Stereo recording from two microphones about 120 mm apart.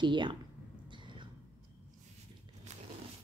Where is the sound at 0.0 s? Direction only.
40° right (ahead or behind).